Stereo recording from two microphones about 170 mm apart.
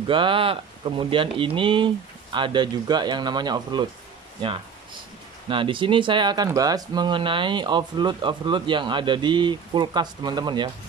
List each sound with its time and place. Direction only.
0.0 s speech: 30° right (ahead or behind)
5.5 s speech: 30° right (ahead or behind)